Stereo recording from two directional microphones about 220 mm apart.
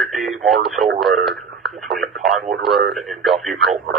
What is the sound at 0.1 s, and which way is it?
Radio, centre (ahead or behind).